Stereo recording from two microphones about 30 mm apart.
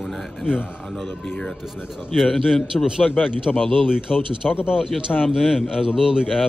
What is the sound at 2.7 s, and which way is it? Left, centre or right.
Speech, left.